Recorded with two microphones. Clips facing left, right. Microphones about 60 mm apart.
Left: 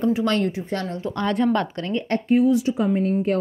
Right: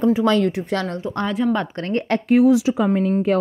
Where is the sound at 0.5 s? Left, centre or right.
Right.